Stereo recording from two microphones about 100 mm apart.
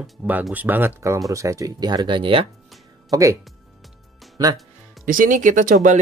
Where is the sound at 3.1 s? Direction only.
40° right (ahead or behind).